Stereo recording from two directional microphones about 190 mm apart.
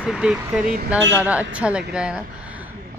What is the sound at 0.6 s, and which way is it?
Speech, 45° right (ahead or behind).